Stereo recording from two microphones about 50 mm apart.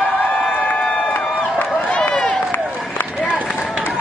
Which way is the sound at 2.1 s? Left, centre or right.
Left.